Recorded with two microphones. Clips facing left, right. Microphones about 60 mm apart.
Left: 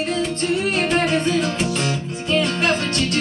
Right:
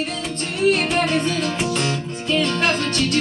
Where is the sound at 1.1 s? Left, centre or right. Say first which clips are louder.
Left 2 dB; centre.